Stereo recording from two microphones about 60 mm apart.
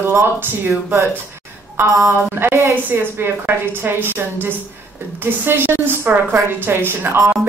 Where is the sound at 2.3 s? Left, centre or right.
Right.